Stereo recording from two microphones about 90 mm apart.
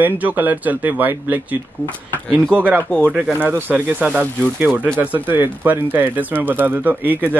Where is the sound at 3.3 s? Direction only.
20° right (ahead or behind).